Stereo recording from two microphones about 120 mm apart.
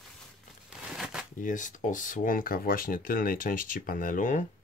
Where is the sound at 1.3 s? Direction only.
90° left.